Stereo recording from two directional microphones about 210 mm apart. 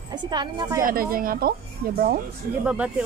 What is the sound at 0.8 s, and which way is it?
Speech, 45° right (ahead or behind).